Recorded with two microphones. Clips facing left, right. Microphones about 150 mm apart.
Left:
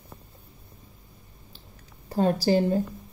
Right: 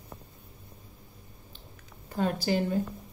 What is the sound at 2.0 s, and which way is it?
Speech, 35° left (ahead or behind).